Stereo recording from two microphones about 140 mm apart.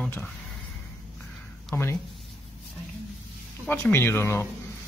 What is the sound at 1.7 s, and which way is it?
Speech, 20° left (ahead or behind).